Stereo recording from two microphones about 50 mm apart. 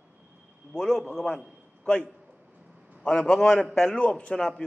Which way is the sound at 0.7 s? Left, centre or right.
Centre.